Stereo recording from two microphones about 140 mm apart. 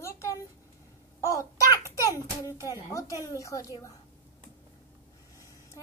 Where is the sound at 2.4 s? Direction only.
25° left (ahead or behind).